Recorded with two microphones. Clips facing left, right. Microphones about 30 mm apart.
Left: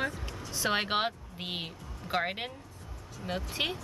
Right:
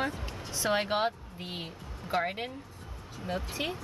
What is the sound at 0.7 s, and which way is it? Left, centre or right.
Speech, left.